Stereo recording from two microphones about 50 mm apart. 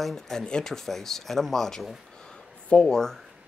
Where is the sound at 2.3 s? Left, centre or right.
Centre.